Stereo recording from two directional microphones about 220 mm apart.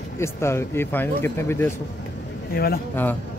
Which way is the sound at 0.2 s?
10° left (ahead or behind).